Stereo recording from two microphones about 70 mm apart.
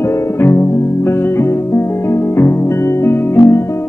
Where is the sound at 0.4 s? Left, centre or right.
Left.